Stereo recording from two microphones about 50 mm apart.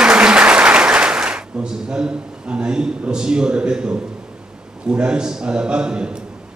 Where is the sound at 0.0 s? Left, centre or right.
Centre.